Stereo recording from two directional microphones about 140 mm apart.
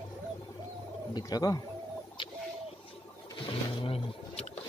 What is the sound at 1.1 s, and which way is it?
Speech, 25° left (ahead or behind).